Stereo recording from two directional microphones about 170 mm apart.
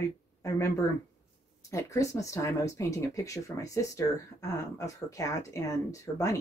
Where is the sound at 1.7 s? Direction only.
20° left (ahead or behind).